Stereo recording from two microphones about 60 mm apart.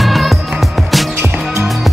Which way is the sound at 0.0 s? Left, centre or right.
Centre.